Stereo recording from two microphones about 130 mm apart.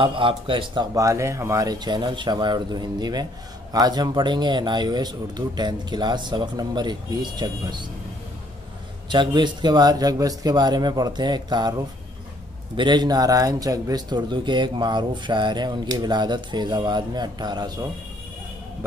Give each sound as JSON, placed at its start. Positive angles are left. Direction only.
{"t": 0.0, "sound": "speech", "side_deg": -40}
{"t": 0.9, "sound": "speech", "side_deg": -25}
{"t": 9.1, "sound": "speech", "side_deg": -35}
{"t": 12.7, "sound": "speech", "side_deg": -35}